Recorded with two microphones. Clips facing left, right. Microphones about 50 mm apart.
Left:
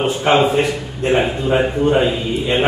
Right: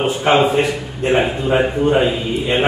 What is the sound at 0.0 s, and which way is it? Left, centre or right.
A man's voice, centre.